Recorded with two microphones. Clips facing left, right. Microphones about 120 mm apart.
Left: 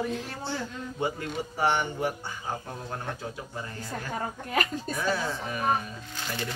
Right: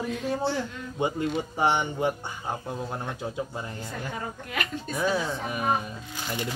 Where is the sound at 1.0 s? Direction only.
20° right (ahead or behind).